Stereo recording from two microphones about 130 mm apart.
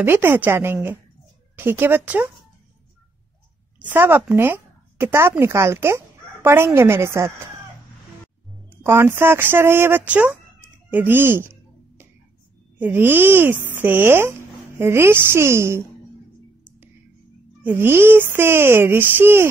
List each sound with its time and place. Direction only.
0.0 s speech: 15° right (ahead or behind)
3.8 s a woman's voice: 15° right (ahead or behind)
8.6 s speech: 20° right (ahead or behind)
12.7 s a woman's voice: 15° right (ahead or behind)
17.6 s speech: 20° right (ahead or behind)